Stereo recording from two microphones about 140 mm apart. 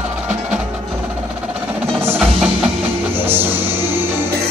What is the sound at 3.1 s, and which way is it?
Music, 15° right (ahead or behind).